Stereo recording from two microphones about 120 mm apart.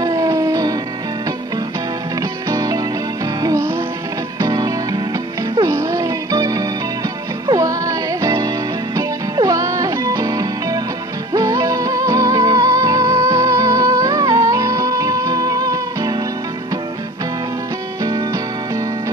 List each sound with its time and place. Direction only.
0.0 s music: 30° right (ahead or behind)
2.5 s music: 30° right (ahead or behind)
18.0 s music: 30° right (ahead or behind)